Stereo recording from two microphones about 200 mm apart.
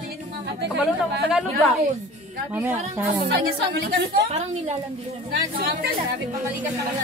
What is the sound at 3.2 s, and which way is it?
Speech, 55° right (ahead or behind).